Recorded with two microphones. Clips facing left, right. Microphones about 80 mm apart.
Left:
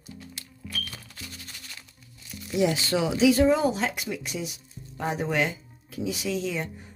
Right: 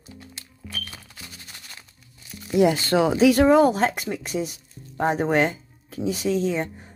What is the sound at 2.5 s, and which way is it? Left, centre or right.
Speech, right.